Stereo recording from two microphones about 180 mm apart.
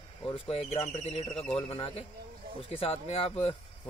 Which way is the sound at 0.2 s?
30° left (ahead or behind).